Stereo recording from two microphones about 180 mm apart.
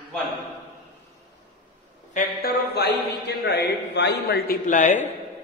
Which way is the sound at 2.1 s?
60° left (ahead or behind).